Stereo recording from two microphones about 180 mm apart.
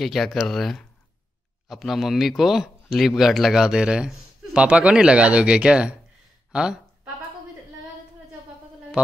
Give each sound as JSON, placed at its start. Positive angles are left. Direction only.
{"t": 0.0, "sound": "speech", "side_deg": 0}
{"t": 9.0, "sound": "speech", "side_deg": -5}